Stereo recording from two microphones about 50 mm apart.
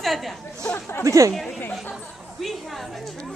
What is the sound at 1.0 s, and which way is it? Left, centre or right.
Speech, right.